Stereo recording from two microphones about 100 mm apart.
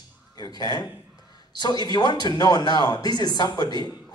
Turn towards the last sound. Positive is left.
turn(degrees=45)  # may be behind; listen again after turning